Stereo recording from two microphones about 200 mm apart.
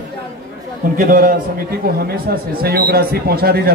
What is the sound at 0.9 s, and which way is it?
Speech, 45° right (ahead or behind).